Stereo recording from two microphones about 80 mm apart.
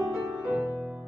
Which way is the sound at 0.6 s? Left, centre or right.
Right.